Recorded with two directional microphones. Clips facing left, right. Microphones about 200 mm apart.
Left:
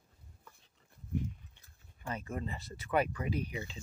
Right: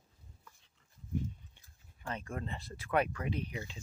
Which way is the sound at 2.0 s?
5° left (ahead or behind).